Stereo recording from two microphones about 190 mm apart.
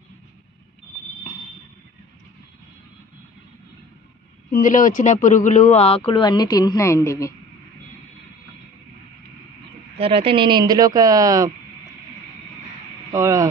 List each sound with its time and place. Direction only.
4.5 s speech: 45° left (ahead or behind); by 7.3 s 15° left (ahead or behind)
9.9 s speech: 30° right (ahead or behind)
13.1 s a sound: 15° right (ahead or behind)